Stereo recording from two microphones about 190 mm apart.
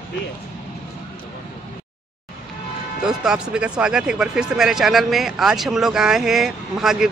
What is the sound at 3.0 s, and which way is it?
A man's voice, 5° right (ahead or behind).